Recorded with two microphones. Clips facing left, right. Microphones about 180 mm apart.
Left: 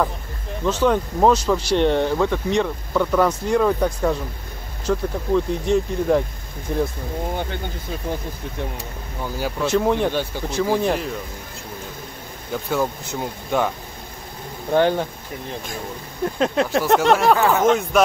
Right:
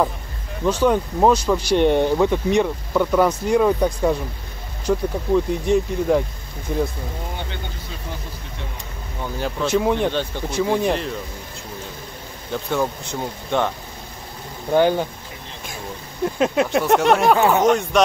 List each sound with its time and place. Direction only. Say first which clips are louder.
0.7 s speech: right 1 dB; 10° right (ahead or behind)
9.2 s speech: even; 5° left (ahead or behind)
10.1 s speech: even; 10° left (ahead or behind)
10.6 s speech: even; centre (ahead or behind)
12.6 s speech: even; centre (ahead or behind)
14.7 s speech: right 1 dB; 5° right (ahead or behind)
16.3 s speech: right 1 dB; 10° right (ahead or behind)
17.4 s speech: right 1 dB; 20° right (ahead or behind)
17.6 s speech: even; centre (ahead or behind)